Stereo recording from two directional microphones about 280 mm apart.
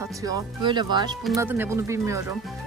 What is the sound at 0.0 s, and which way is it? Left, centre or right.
Speech, centre.